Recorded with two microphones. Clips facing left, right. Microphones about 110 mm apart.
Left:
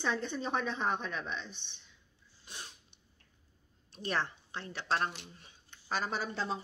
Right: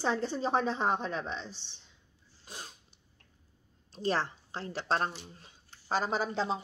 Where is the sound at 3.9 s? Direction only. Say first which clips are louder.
Right 4 dB; 30° right (ahead or behind).